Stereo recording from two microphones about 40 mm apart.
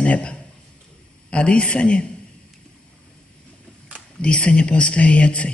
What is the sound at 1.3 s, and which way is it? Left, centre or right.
Speech, left.